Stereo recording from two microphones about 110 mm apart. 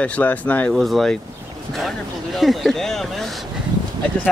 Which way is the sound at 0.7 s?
Centre (ahead or behind).